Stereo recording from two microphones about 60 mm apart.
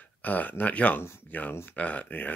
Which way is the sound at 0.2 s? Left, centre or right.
Left.